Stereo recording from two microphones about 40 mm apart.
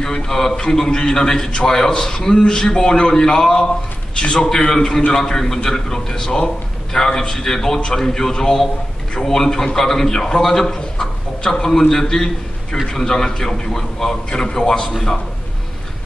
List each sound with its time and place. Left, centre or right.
0.0 s a man's voice: centre